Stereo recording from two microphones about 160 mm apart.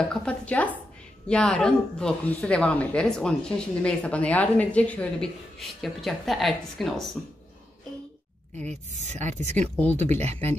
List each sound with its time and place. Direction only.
0.1 s a woman's voice: 5° left (ahead or behind)
8.5 s speech: 45° right (ahead or behind)
9.6 s a woman's voice: 10° left (ahead or behind)